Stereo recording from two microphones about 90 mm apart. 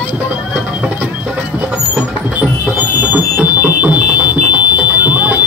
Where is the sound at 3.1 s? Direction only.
15° right (ahead or behind).